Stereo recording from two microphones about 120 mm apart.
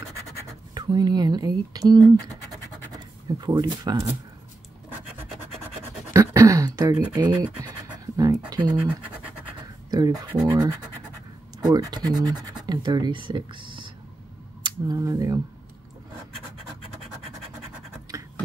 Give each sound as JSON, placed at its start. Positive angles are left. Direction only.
{"t": 0.7, "sound": "speech", "side_deg": -35}
{"t": 6.1, "sound": "a sound", "side_deg": -25}
{"t": 7.6, "sound": "scratch", "side_deg": -35}
{"t": 8.7, "sound": "speech", "side_deg": -15}
{"t": 9.8, "sound": "speech", "side_deg": -35}
{"t": 14.6, "sound": "speech", "side_deg": -30}